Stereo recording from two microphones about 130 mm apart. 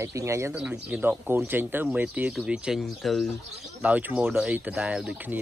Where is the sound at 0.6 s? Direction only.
10° right (ahead or behind).